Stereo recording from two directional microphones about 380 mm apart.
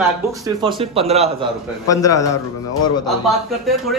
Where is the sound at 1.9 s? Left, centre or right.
Centre.